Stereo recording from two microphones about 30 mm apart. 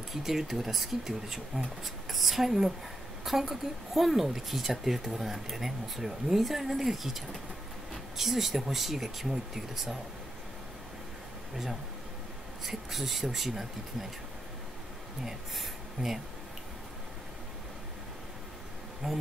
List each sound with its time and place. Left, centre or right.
0.1 s a woman's voice: centre
12.6 s a woman's voice: centre
19.0 s a woman's voice: centre